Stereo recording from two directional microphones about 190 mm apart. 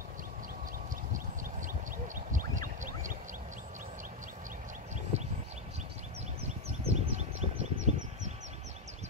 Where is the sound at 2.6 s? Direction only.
45° right (ahead or behind).